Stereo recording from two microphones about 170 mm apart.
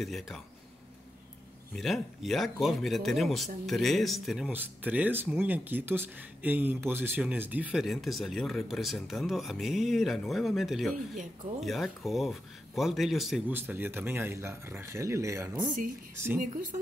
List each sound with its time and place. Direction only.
0.0 s speech: centre (ahead or behind)
1.8 s speech: centre (ahead or behind)
13.5 s speech: 10° right (ahead or behind)